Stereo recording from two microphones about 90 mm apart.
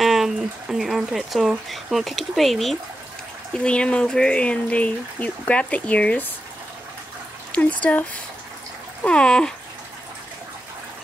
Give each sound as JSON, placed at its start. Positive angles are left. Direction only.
{"t": 0.0, "sound": "a sound", "side_deg": -5}
{"t": 1.7, "sound": "speech", "side_deg": 0}
{"t": 3.5, "sound": "speech", "side_deg": 10}
{"t": 7.5, "sound": "speech", "side_deg": 15}